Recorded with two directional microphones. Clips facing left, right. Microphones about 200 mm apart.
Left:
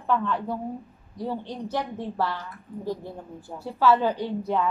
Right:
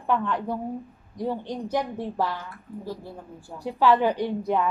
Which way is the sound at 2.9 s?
20° left (ahead or behind).